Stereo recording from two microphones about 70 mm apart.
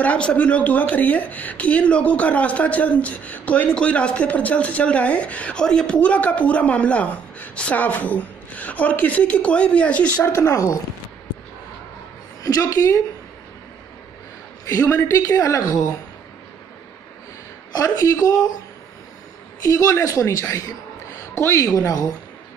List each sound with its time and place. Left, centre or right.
0.0 s speech: centre
10.3 s a woman's voice: left
12.4 s a woman's voice: left
14.7 s a woman's voice: left
17.7 s a woman's voice: left
19.6 s a woman's voice: left